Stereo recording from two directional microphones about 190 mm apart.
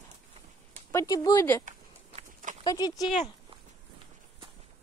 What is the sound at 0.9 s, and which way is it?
Speech, 20° left (ahead or behind).